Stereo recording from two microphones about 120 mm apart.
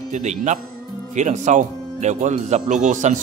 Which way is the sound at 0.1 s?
85° right.